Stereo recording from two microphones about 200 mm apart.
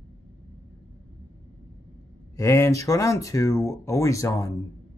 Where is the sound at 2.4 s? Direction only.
15° left (ahead or behind).